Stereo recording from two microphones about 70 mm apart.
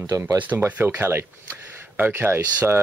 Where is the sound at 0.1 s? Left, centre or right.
Right.